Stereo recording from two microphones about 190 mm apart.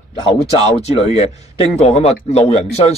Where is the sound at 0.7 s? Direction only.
35° left (ahead or behind).